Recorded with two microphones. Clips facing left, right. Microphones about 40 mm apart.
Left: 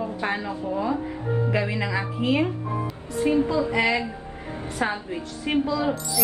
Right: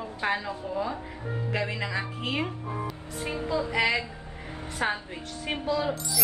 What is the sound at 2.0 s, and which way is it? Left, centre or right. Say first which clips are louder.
Speech: left 7 dB; left.